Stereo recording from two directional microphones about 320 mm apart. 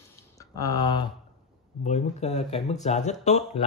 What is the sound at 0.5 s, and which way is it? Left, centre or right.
Speech, centre.